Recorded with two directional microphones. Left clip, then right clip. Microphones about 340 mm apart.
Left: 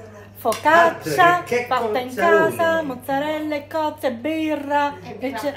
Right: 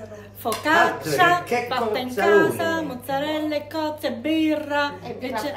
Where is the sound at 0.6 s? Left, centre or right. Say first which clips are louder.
Left 4 dB; centre.